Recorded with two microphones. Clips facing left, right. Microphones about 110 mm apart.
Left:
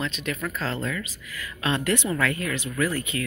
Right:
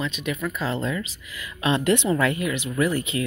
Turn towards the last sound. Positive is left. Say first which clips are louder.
# right 3 dB
turn(degrees=-20)  # may be behind; listen again after turning